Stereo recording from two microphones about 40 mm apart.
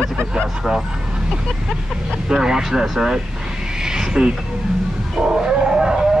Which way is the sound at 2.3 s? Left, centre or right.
Centre.